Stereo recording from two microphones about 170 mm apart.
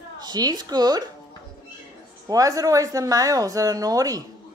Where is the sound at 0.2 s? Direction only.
25° right (ahead or behind).